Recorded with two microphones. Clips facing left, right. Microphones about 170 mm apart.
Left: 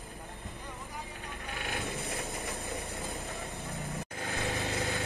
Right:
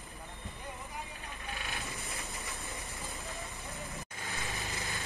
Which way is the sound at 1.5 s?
65° left (ahead or behind).